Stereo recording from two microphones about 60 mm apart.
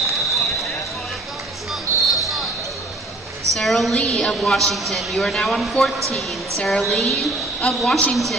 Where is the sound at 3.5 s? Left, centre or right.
Centre.